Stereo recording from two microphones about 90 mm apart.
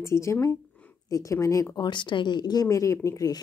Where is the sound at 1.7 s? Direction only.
60° left (ahead or behind); by 3.4 s 40° left (ahead or behind).